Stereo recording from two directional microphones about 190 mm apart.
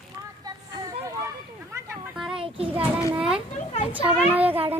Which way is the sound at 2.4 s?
30° right (ahead or behind).